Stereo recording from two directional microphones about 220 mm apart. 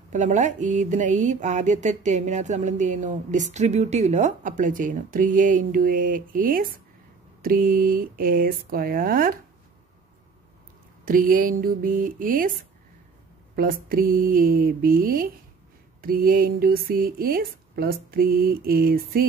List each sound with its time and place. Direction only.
0.1 s speech: 35° right (ahead or behind)
11.1 s speech: 40° right (ahead or behind)
13.6 s speech: 40° right (ahead or behind)